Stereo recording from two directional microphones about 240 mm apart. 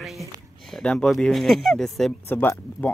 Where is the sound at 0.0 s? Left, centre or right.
Centre.